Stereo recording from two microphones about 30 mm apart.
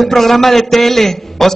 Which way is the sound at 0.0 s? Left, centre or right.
Centre.